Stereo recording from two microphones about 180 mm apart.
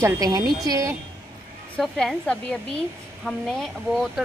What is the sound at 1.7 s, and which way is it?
Speech, centre (ahead or behind).